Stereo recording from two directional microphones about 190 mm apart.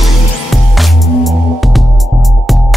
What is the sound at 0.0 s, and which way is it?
Music, centre (ahead or behind).